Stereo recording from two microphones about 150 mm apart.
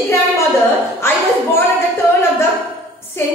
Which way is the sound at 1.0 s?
15° left (ahead or behind).